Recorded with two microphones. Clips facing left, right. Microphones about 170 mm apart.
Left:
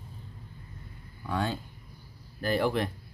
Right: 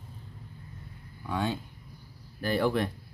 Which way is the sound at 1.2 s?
5° right (ahead or behind).